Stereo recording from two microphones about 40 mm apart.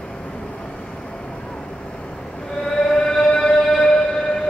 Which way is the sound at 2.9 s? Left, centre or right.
Centre.